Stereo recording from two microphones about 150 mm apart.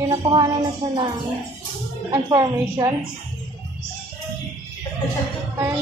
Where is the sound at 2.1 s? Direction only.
20° right (ahead or behind).